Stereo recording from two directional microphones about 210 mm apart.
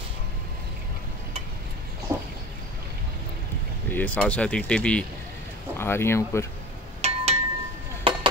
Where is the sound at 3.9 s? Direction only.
5° left (ahead or behind).